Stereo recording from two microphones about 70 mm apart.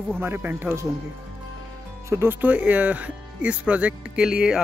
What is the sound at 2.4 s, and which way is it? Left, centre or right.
Speech, right.